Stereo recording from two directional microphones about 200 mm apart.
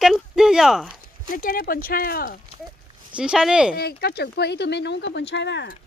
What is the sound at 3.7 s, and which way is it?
Speech, 50° left (ahead or behind).